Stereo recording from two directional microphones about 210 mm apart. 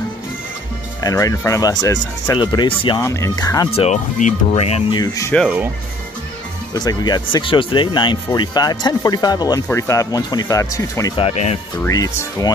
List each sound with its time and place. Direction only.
1.0 s speech: 15° left (ahead or behind)
5.0 s speech: 15° left (ahead or behind)
6.7 s speech: 20° left (ahead or behind)
11.8 s speech: 15° left (ahead or behind)